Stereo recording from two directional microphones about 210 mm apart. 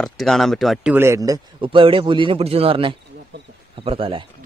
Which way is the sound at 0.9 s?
15° right (ahead or behind).